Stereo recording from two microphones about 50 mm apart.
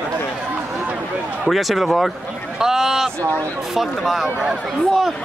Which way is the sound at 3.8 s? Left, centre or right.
Centre.